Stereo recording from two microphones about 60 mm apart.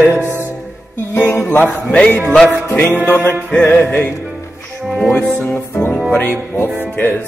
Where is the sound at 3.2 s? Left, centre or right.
Left.